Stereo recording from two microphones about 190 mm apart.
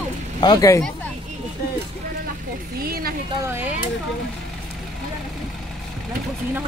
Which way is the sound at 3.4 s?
10° right (ahead or behind).